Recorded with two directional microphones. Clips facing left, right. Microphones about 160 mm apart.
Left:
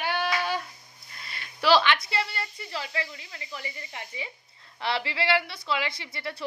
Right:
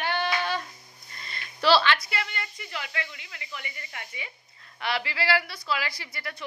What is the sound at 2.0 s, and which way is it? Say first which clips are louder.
A woman's voice: left 3 dB; 30° left (ahead or behind).